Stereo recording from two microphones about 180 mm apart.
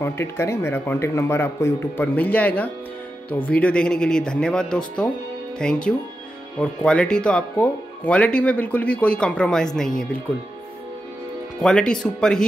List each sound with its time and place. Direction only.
0.0 s speech: 15° left (ahead or behind)
11.6 s speech: 5° left (ahead or behind)